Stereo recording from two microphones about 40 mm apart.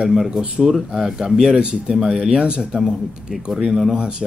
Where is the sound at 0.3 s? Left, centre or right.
Centre.